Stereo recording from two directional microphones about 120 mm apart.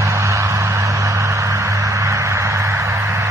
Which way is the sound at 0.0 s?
25° right (ahead or behind).